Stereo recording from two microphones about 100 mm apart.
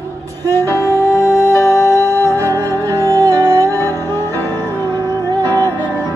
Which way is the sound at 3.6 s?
25° left (ahead or behind).